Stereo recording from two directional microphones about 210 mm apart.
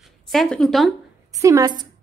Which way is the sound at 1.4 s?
15° right (ahead or behind).